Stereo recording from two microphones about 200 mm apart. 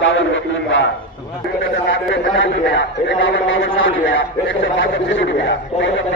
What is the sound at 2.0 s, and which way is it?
A man's voice, 70° left (ahead or behind).